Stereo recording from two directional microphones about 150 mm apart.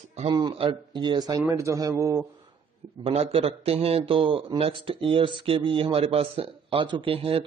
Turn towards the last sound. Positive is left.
turn(degrees=-40)  # may be behind; listen again after turning